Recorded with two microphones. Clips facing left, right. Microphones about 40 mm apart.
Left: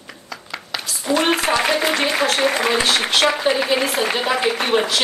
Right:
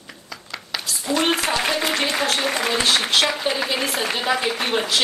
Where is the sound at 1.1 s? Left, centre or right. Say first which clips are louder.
Left 3 dB; centre.